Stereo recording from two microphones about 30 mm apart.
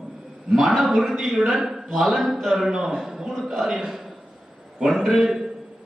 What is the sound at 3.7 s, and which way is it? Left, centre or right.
Speech, centre.